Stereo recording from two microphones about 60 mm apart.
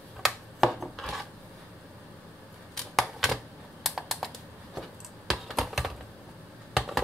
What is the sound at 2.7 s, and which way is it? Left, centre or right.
Typewriter, centre.